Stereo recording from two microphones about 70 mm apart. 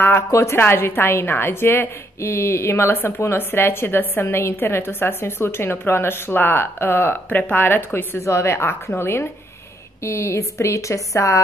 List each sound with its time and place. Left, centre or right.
0.3 s a woman's voice: left
8.2 s a woman's voice: left